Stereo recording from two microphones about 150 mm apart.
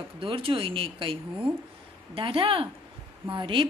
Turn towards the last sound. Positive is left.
turn(degrees=-35)  # may be behind; listen again after turning